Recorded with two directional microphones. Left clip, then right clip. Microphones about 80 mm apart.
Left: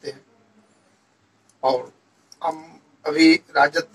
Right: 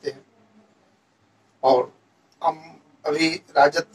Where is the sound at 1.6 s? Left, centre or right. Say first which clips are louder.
Right 3 dB; right.